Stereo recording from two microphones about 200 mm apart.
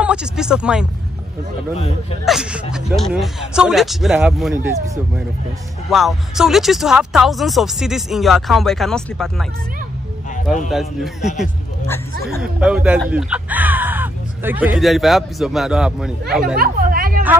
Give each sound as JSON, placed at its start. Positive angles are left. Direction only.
{"t": 0.0, "sound": "speech", "side_deg": -5}
{"t": 2.2, "sound": "speech", "side_deg": -5}
{"t": 5.9, "sound": "speech", "side_deg": 0}
{"t": 10.7, "sound": "speech", "side_deg": 0}
{"t": 16.5, "sound": "chatter", "side_deg": -45}